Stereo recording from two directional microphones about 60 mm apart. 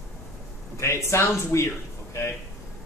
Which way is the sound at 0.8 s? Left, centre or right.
Left.